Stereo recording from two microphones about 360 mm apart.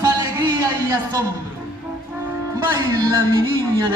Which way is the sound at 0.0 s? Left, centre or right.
Centre.